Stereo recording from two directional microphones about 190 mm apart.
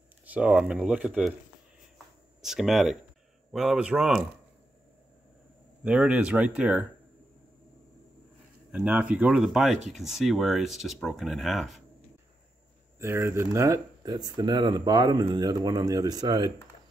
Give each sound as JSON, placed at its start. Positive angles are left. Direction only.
{"t": 0.2, "sound": "speech", "side_deg": -5}
{"t": 2.4, "sound": "speech", "side_deg": 0}
{"t": 5.9, "sound": "speech", "side_deg": -5}
{"t": 8.7, "sound": "speech", "side_deg": -5}
{"t": 13.0, "sound": "speech", "side_deg": -15}